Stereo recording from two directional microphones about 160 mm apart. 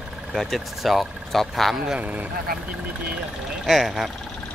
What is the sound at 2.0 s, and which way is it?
Speech, 10° right (ahead or behind).